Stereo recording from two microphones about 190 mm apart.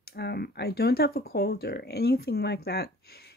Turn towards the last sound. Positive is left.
turn(degrees=55)  # may be behind; listen again after turning